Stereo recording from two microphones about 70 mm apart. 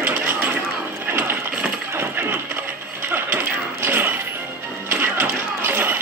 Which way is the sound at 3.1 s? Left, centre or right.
Right.